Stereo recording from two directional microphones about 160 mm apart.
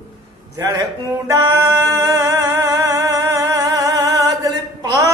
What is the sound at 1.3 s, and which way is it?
Music, 20° right (ahead or behind).